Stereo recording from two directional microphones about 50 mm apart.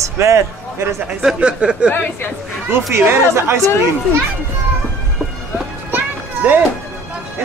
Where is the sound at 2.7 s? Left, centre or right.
Right.